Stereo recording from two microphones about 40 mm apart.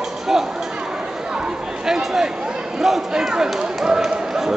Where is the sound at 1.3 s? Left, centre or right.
Centre.